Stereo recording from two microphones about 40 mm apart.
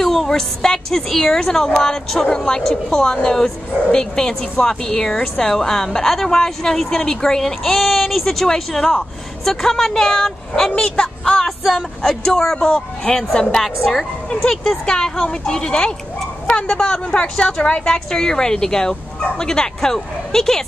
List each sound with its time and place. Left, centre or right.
0.0 s a sound: centre
0.3 s a woman's voice: centre
11.4 s a woman's voice: centre
13.6 s a woman's voice: centre
14.5 s a woman's voice: centre; by 17.8 s left
17.8 s speech: centre